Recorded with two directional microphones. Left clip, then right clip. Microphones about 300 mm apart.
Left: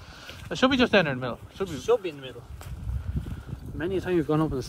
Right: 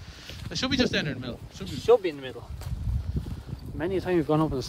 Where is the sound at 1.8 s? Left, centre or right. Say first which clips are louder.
Right 4 dB; right.